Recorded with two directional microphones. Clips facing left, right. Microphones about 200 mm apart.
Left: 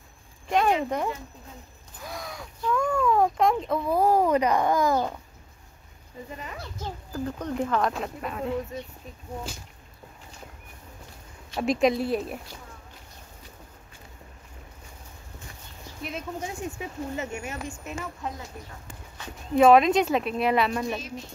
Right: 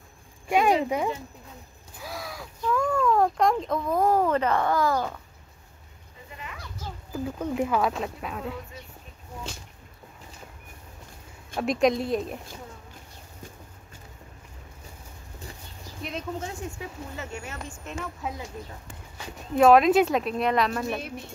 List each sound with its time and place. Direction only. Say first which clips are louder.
0.5 s speech: right 1 dB; 10° right (ahead or behind); by 5.2 s 20° left (ahead or behind)
6.3 s speech: left 2 dB; 40° left (ahead or behind)
7.1 s speech: right 2 dB; 5° right (ahead or behind)
11.6 s speech: even; centre (ahead or behind)
16.0 s speech: right 1 dB; 5° left (ahead or behind)
16.3 s speech: left 1 dB; 15° left (ahead or behind)
17.6 s speech: left 1 dB; 5° left (ahead or behind)
19.5 s speech: even; centre (ahead or behind)